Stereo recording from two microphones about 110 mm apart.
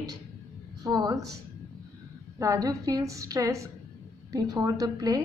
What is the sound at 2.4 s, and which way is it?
A woman's voice, 30° right (ahead or behind).